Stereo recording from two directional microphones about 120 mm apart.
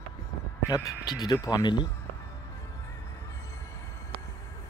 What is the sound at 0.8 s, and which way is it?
Speech, 35° left (ahead or behind).